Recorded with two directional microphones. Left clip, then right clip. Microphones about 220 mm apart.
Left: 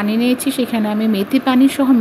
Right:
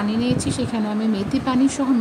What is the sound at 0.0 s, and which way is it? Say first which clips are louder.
Speech: left 5 dB; 15° left (ahead or behind).